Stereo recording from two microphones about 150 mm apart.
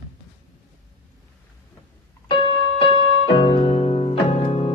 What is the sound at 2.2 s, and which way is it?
Music, 35° left (ahead or behind).